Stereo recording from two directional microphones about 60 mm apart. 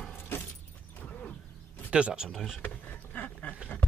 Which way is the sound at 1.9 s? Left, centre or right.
Centre.